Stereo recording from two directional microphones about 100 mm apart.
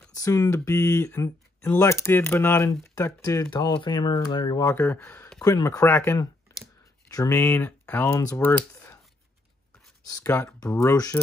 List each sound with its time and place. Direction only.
0.1 s speech: 30° left (ahead or behind)
2.9 s speech: 35° left (ahead or behind)
3.5 s speech: 45° left (ahead or behind)
4.6 s speech: 15° left (ahead or behind)
5.4 s speech: 35° left (ahead or behind)
5.9 s speech: 20° left (ahead or behind)
7.1 s speech: 35° left (ahead or behind)
7.3 s speech: 15° left (ahead or behind)
10.2 s speech: 25° left (ahead or behind)